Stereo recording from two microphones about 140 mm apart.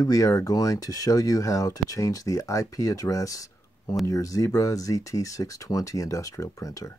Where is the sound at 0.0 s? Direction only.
25° left (ahead or behind).